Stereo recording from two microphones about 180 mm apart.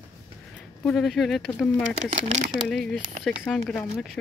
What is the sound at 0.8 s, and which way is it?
Speech, centre (ahead or behind).